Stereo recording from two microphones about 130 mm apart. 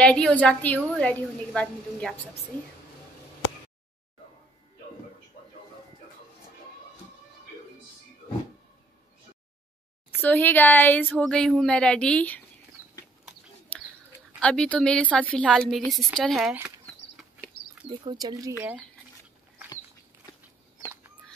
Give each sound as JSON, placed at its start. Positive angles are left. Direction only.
{"t": 0.0, "sound": "a woman's voice", "side_deg": 10}
{"t": 10.2, "sound": "a woman's voice", "side_deg": 15}
{"t": 14.4, "sound": "a woman's voice", "side_deg": 10}
{"t": 18.2, "sound": "speech", "side_deg": -25}